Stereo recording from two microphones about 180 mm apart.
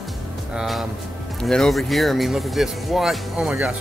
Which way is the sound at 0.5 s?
Centre (ahead or behind).